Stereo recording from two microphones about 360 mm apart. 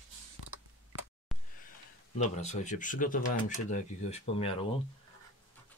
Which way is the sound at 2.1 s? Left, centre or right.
Centre.